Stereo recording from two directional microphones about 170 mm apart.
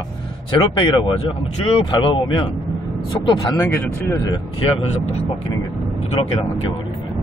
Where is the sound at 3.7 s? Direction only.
15° left (ahead or behind).